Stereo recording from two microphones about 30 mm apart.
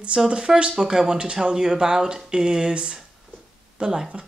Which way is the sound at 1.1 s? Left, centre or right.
Right.